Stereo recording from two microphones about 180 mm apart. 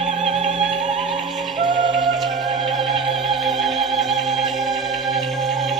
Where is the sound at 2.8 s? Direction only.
Centre (ahead or behind).